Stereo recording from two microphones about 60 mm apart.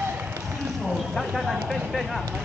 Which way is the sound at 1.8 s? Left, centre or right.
Centre.